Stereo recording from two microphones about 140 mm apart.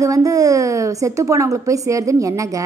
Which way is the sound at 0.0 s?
25° right (ahead or behind).